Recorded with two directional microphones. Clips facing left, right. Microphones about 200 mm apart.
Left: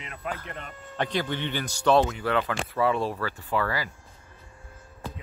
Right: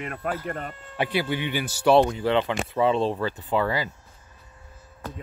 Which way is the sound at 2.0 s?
25° right (ahead or behind).